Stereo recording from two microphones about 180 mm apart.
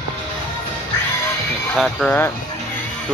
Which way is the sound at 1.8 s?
Centre (ahead or behind).